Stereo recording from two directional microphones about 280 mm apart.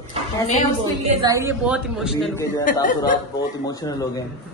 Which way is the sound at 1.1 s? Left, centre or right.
Centre.